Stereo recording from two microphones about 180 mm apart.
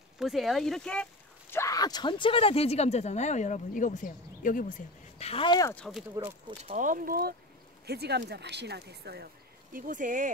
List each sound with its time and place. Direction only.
0.2 s speech: centre (ahead or behind)
1.5 s a woman's voice: 15° left (ahead or behind); by 5.3 s 45° left (ahead or behind)
5.3 s speech: 25° left (ahead or behind)
5.8 s speech: centre (ahead or behind)
6.7 s speech: 45° right (ahead or behind)
7.8 s speech: 65° right (ahead or behind); by 10.3 s 45° right (ahead or behind)